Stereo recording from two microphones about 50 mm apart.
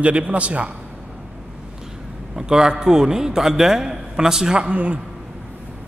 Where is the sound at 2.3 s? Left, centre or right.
Centre.